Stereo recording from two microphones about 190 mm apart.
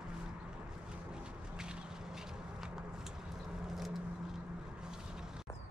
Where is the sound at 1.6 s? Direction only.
5° right (ahead or behind).